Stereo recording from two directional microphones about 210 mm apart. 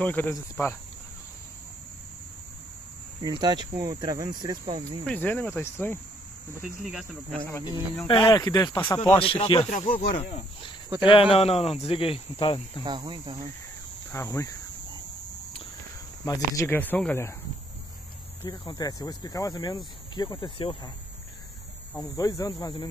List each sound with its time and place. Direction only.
0.0 s speech: 10° left (ahead or behind)
3.2 s speech: 20° right (ahead or behind)
5.0 s speech: 10° left (ahead or behind)
6.8 s speech: centre (ahead or behind)
8.1 s speech: 20° left (ahead or behind)
9.2 s speech: 25° left (ahead or behind)
12.8 s speech: 20° right (ahead or behind)
14.1 s speech: 15° left (ahead or behind)
16.3 s speech: 15° left (ahead or behind)
18.4 s speech: 20° left (ahead or behind)
21.9 s speech: 15° left (ahead or behind)